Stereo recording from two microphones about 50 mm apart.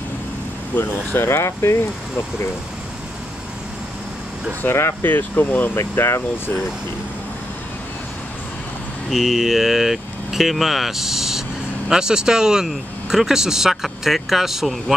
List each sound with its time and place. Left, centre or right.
0.7 s speech: left
4.6 s speech: left
5.3 s speech: left
5.8 s speech: left
9.1 s speech: centre